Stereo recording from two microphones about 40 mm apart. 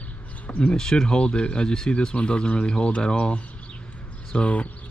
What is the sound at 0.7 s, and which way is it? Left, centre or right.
Speech, centre.